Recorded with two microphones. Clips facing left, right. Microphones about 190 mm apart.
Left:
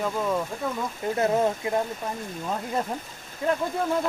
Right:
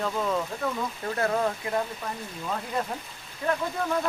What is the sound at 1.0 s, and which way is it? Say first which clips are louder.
Speech: left 4 dB; 20° left (ahead or behind).